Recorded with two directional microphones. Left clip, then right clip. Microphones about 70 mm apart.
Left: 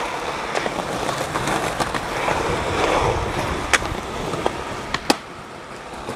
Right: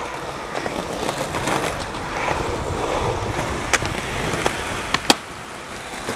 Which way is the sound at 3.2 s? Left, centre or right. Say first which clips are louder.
Left 1 dB; centre.